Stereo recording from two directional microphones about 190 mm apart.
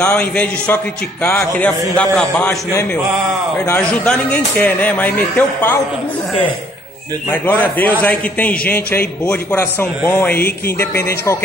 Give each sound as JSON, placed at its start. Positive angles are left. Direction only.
{"t": 0.0, "sound": "a man's voice", "side_deg": 10}
{"t": 7.4, "sound": "a man's voice", "side_deg": 10}